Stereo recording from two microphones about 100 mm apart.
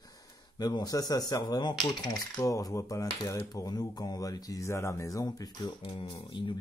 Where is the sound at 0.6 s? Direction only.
40° left (ahead or behind).